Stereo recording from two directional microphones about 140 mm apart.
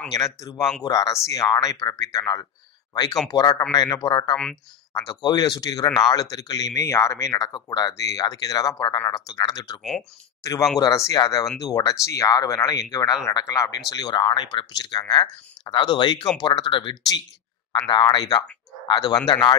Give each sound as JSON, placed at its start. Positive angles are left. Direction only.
{"t": 0.1, "sound": "speech", "side_deg": 25}